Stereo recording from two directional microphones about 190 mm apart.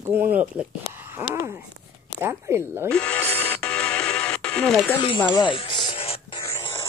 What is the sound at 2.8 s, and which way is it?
Music, 5° left (ahead or behind).